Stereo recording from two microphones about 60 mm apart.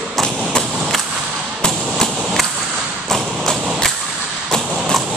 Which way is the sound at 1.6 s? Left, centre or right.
Centre.